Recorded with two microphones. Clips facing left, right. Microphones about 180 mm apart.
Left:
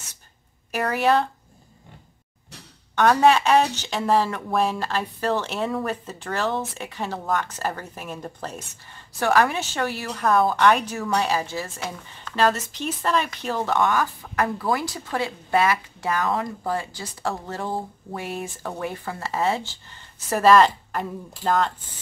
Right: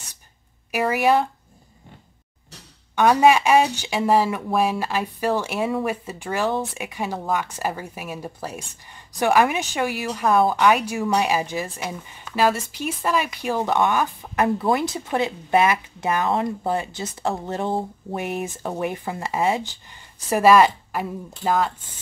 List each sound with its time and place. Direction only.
0.7 s a woman's voice: 10° right (ahead or behind)
3.0 s a woman's voice: 10° right (ahead or behind)